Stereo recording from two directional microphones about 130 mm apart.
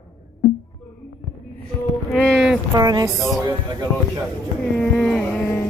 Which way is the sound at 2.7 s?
30° right (ahead or behind).